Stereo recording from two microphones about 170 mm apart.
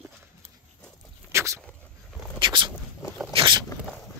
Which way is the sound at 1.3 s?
15° right (ahead or behind).